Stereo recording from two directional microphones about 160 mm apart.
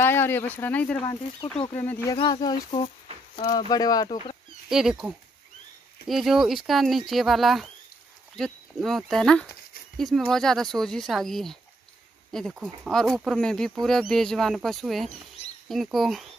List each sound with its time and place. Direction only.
0.0 s speech: 15° left (ahead or behind)
2.1 s speech: 25° left (ahead or behind)
4.6 s speech: 5° right (ahead or behind)